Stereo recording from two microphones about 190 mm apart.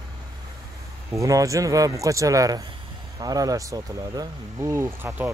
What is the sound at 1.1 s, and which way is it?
Speech, 15° right (ahead or behind).